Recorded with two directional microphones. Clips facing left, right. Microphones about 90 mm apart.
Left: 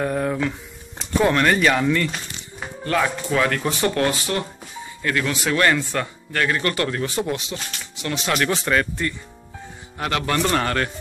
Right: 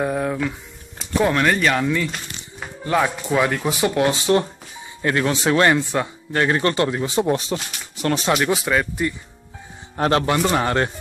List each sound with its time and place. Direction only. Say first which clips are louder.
0.0 s speech: even; 5° right (ahead or behind)
2.8 s speech: right 2 dB; 15° right (ahead or behind)
5.0 s speech: right 4 dB; 30° right (ahead or behind)
8.0 s speech: right 6 dB; 40° right (ahead or behind)
8.3 s speech: even; 10° right (ahead or behind)
9.9 s speech: right 6 dB; 35° right (ahead or behind)
10.2 s speech: right 2 dB; 15° right (ahead or behind)